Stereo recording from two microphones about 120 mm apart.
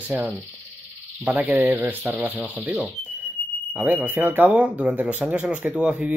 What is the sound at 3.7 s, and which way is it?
Speech, 10° right (ahead or behind).